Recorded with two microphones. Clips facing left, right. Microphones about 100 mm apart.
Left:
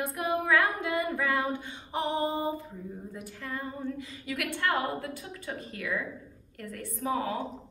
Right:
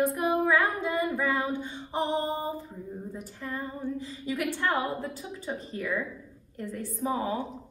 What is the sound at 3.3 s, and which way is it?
Female singing, 20° right (ahead or behind).